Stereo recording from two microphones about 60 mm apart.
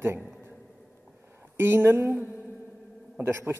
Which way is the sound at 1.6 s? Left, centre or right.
Right.